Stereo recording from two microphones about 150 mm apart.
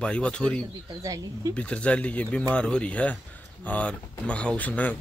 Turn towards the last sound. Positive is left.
turn(degrees=10)  # may be behind; listen again after turning